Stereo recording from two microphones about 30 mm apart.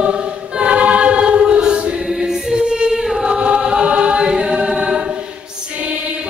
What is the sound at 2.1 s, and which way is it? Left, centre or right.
Choir, centre.